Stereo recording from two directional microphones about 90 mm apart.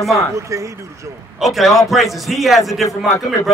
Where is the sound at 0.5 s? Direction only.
40° right (ahead or behind).